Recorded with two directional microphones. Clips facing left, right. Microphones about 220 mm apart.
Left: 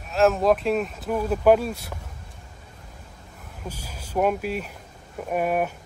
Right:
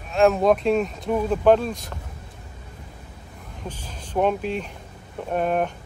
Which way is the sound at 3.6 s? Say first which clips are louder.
Right 1 dB; 10° left (ahead or behind).